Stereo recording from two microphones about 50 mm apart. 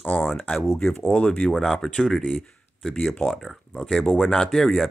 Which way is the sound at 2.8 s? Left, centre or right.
Centre.